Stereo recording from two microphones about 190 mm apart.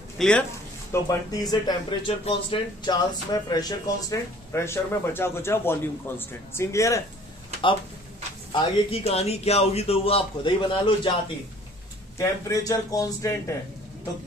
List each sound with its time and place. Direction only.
0.2 s a man's voice: 5° left (ahead or behind)
0.9 s speech: 20° left (ahead or behind)
8.5 s a man's voice: 30° left (ahead or behind)
12.2 s speech: 15° left (ahead or behind)